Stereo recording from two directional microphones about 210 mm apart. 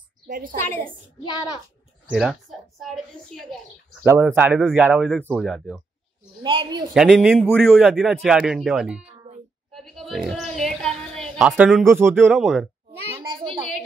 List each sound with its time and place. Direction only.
0.3 s a woman's voice: 40° right (ahead or behind)
1.2 s a child's voice: 20° left (ahead or behind)
2.8 s a man's voice: centre (ahead or behind)
6.4 s a woman's voice: 25° right (ahead or behind)
6.9 s a man's voice: centre (ahead or behind)
9.7 s a sound: centre (ahead or behind)